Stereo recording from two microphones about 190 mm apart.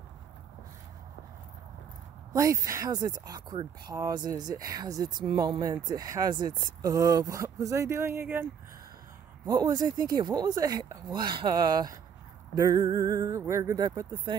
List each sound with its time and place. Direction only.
2.3 s speech: 15° right (ahead or behind)
9.5 s speech: 20° right (ahead or behind)
12.5 s music: 20° right (ahead or behind)